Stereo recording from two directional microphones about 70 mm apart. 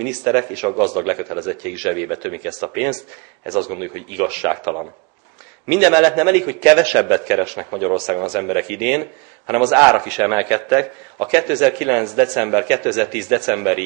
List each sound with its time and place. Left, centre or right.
0.0 s speech: centre